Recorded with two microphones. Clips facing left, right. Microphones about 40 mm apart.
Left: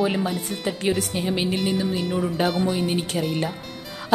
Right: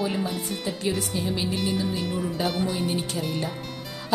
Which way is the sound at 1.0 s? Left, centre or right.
Left.